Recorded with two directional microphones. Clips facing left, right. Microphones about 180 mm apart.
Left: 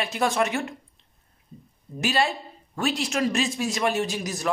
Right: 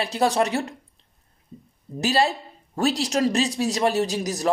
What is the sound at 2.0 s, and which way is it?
Speech, 35° right (ahead or behind).